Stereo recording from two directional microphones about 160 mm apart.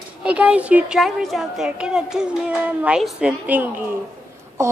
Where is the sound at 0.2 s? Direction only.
5° right (ahead or behind).